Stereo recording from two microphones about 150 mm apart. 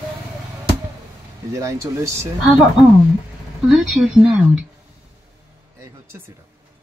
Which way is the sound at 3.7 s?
5° right (ahead or behind).